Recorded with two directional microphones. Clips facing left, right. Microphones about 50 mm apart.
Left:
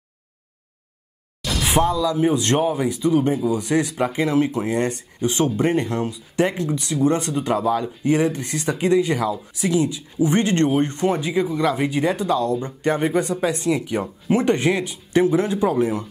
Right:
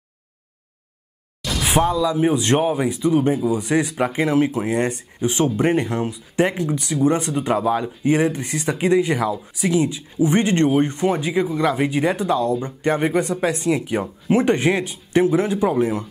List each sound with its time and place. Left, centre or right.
1.8 s speech: centre